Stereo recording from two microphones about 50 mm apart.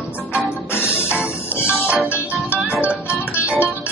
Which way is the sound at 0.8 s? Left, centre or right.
Left.